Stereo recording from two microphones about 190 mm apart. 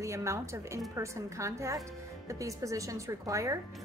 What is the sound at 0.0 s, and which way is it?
A woman's voice, 15° right (ahead or behind).